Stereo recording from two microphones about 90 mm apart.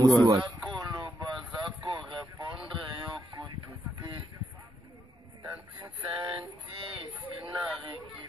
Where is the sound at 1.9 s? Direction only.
55° right (ahead or behind).